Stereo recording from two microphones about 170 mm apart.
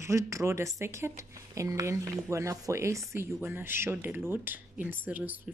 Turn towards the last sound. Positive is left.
turn(degrees=-10)  # may be behind; listen again after turning